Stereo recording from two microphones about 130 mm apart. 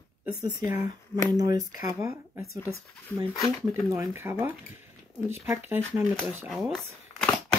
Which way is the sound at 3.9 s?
20° right (ahead or behind).